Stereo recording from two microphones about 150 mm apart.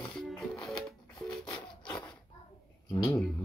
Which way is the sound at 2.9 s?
20° left (ahead or behind).